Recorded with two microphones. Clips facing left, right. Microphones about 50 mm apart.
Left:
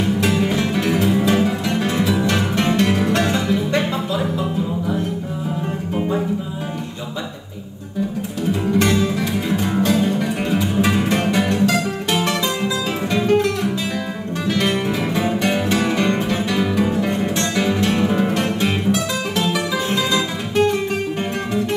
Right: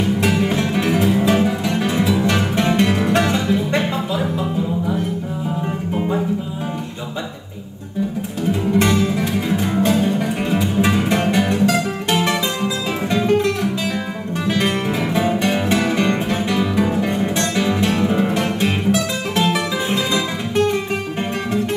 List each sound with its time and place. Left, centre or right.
0.2 s music: right
8.5 s music: right